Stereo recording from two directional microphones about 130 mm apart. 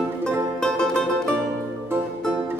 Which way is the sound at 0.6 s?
5° left (ahead or behind).